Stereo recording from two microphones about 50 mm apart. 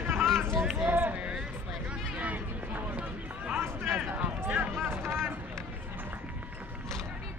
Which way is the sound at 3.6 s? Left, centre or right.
Right.